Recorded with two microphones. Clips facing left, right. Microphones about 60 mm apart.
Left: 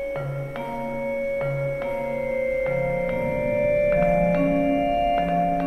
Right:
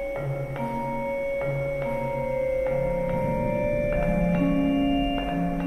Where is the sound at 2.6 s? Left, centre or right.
Left.